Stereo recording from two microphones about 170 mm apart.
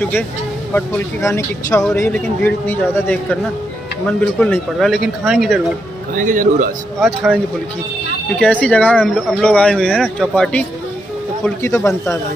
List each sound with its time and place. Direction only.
0.7 s a man's voice: 15° left (ahead or behind)
1.8 s a man's voice: 5° left (ahead or behind)
6.1 s speech: 50° right (ahead or behind)
7.0 s speech: centre (ahead or behind)
8.4 s a man's voice: 10° left (ahead or behind)
11.4 s a man's voice: 15° left (ahead or behind)